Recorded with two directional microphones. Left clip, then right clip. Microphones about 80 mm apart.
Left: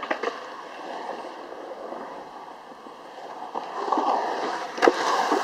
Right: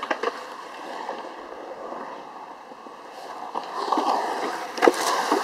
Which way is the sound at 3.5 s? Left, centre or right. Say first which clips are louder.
Right 1 dB; right.